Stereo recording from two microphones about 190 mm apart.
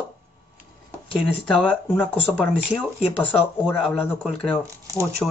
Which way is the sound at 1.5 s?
5° left (ahead or behind).